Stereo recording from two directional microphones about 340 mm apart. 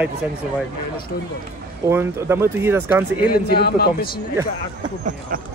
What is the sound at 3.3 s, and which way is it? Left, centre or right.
Speech, left.